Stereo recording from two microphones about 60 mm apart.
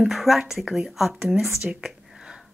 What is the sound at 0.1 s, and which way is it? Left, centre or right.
A woman's voice, centre.